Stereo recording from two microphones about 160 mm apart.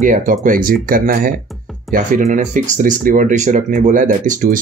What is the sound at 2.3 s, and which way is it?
Speech, 55° right (ahead or behind).